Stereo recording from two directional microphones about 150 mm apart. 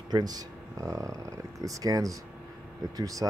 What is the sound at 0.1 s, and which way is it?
Speech, 25° right (ahead or behind).